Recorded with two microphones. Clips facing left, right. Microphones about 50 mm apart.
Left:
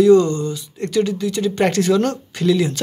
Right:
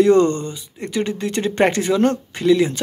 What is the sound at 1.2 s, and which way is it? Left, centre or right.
Speech, right.